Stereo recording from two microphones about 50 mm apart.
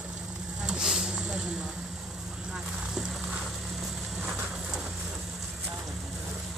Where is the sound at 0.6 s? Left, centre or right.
Centre.